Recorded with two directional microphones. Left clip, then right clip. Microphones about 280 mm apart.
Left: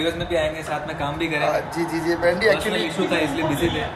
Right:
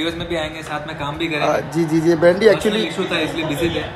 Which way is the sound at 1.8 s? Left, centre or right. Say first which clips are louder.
Right 6 dB; right.